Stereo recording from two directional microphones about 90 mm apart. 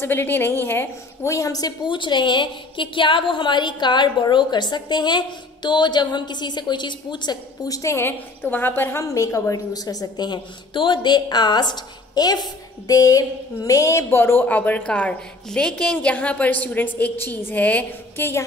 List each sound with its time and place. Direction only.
0.0 s a woman's voice: 25° left (ahead or behind)
1.3 s a woman's voice: 40° left (ahead or behind)
1.9 s a woman's voice: 60° left (ahead or behind)
7.6 s a woman's voice: 40° left (ahead or behind)
8.4 s a woman's voice: 20° left (ahead or behind)